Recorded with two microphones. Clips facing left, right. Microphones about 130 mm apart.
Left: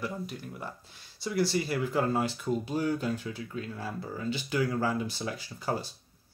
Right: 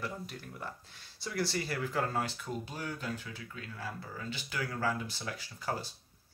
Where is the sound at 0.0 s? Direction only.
10° left (ahead or behind).